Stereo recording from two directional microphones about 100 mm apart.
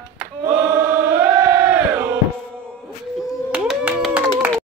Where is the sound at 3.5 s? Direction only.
15° right (ahead or behind).